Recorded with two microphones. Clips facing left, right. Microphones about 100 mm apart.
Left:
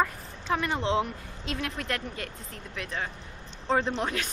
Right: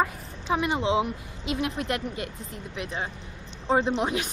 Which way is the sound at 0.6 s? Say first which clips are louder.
Right 3 dB; 10° right (ahead or behind).